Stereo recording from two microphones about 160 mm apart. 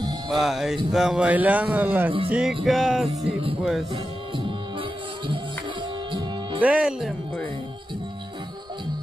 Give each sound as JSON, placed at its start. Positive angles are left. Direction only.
{"t": 0.3, "sound": "speech", "side_deg": 0}
{"t": 3.1, "sound": "speech", "side_deg": -40}
{"t": 3.9, "sound": "music", "side_deg": -30}
{"t": 6.6, "sound": "speech", "side_deg": -5}